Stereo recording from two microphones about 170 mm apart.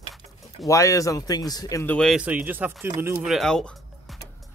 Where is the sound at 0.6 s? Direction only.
20° left (ahead or behind).